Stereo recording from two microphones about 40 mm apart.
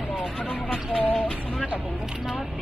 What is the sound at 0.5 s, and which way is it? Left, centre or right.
Vehicle, centre.